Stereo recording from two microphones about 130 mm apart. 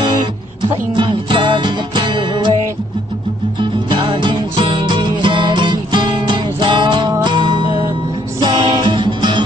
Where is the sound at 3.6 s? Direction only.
40° right (ahead or behind).